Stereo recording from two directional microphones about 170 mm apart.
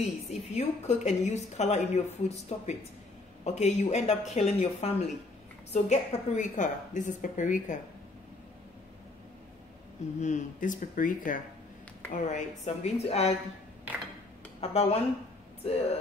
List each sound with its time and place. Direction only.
0.0 s a woman's voice: 40° left (ahead or behind)
10.2 s a woman's voice: 45° left (ahead or behind)
14.6 s a woman's voice: 35° left (ahead or behind)